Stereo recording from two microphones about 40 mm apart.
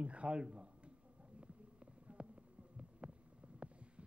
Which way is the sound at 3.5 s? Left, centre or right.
Right.